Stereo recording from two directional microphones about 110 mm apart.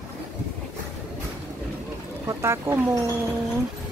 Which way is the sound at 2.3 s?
25° right (ahead or behind).